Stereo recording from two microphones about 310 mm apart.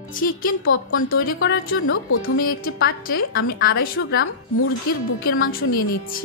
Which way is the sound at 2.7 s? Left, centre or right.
Left.